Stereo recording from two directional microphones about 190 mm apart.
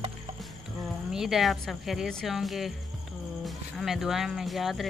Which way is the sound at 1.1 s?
Centre (ahead or behind).